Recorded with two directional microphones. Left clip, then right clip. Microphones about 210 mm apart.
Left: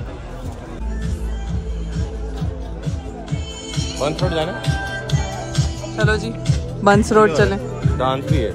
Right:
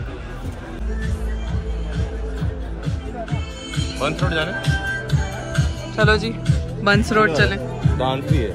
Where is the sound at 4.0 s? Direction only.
50° left (ahead or behind).